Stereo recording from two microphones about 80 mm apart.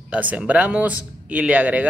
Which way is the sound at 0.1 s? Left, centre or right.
Centre.